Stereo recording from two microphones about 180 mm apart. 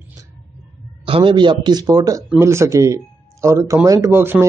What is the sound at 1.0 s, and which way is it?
Speech, 30° right (ahead or behind).